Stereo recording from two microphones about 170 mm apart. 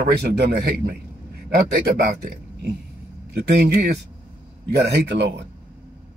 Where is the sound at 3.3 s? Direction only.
80° right.